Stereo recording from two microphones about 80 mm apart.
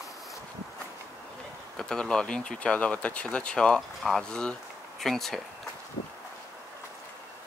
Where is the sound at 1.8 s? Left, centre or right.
Centre.